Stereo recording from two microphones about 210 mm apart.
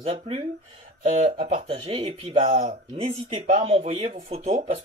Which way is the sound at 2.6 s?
40° right (ahead or behind).